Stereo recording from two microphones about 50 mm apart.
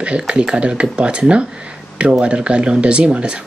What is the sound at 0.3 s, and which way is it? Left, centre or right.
Speech, centre.